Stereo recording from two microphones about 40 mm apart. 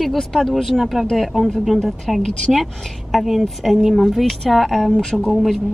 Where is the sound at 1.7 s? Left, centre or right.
Centre.